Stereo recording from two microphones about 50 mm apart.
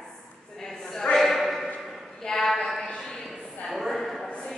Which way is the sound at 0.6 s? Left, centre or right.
Centre.